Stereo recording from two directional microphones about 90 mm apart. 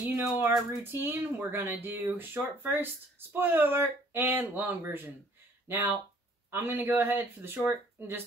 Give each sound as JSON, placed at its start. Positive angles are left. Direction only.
{"t": 0.1, "sound": "speech", "side_deg": -25}